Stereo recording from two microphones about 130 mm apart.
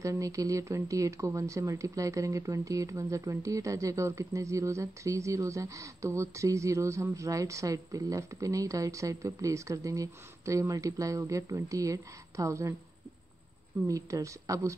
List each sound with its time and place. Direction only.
0.0 s speech: 25° right (ahead or behind)
13.8 s speech: 25° right (ahead or behind)